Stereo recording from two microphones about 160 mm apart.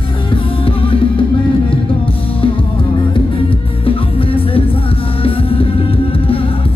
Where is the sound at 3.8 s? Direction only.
35° left (ahead or behind).